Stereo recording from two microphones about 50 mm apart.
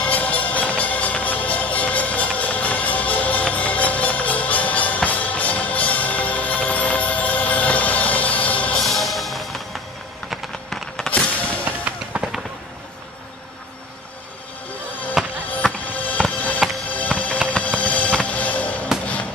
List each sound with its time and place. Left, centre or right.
0.0 s music: left
8.8 s music: centre
11.1 s music: centre
11.8 s fireworks: right
15.2 s music: centre
15.9 s music: left